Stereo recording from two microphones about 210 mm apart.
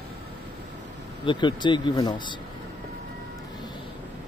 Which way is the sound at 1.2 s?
20° left (ahead or behind).